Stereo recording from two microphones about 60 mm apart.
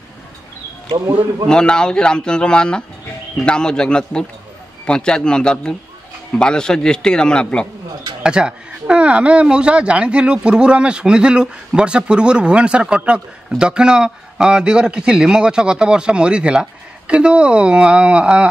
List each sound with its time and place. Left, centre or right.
1.5 s a man's voice: centre
8.2 s speech: centre